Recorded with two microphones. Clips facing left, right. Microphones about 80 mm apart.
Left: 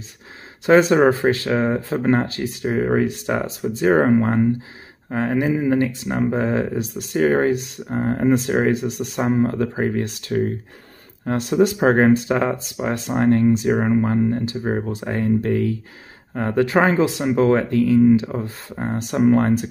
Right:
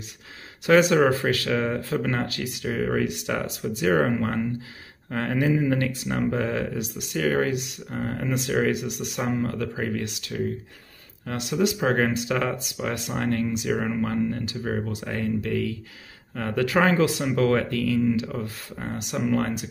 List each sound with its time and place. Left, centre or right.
0.7 s speech: left